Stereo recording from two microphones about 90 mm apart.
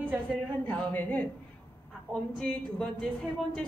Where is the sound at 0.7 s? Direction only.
15° left (ahead or behind).